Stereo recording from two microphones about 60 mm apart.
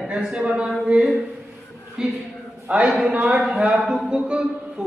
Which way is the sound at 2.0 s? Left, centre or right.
Centre.